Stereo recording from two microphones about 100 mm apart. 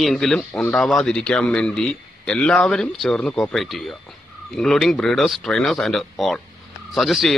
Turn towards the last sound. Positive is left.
turn(degrees=0)  # may be behind; listen again after turning